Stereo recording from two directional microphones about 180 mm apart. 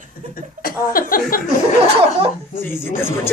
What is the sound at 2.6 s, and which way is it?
Speech, 15° left (ahead or behind).